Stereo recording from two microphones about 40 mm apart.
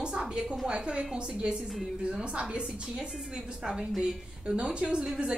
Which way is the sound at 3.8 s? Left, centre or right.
Right.